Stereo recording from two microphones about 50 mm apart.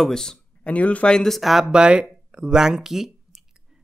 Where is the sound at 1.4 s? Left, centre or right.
Centre.